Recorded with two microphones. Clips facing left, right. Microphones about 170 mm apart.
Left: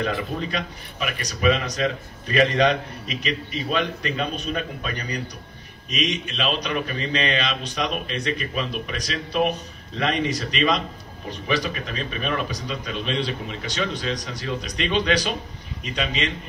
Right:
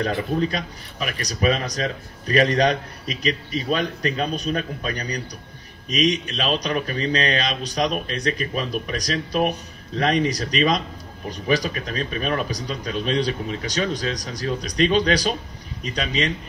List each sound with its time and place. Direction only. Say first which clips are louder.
0.0 s speech: right 4 dB; 40° right (ahead or behind)